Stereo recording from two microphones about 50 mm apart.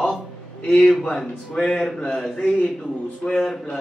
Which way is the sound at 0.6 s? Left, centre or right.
Centre.